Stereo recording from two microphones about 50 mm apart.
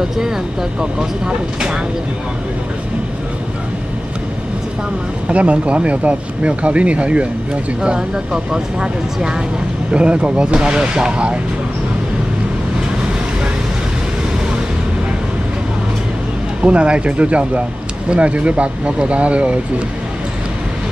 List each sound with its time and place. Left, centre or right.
0.7 s speech: centre
5.3 s speech: right
16.6 s speech: right